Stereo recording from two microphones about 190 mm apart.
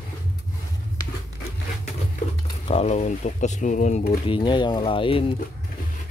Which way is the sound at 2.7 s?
35° left (ahead or behind).